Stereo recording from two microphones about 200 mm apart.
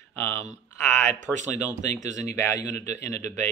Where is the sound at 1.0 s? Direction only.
35° right (ahead or behind).